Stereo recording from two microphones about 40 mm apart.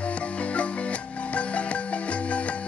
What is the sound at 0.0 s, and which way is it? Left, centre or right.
Music, left.